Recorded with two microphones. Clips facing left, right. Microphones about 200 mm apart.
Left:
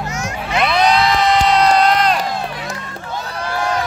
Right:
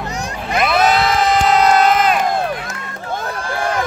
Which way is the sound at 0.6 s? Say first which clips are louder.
Even; 5° right (ahead or behind).